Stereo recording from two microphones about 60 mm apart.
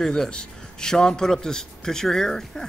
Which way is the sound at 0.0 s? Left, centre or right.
Centre.